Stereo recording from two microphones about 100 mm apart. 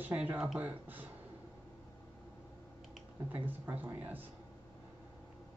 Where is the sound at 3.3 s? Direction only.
20° right (ahead or behind).